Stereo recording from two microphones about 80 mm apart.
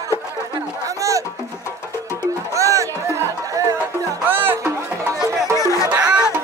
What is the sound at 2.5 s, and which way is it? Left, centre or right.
Music, right.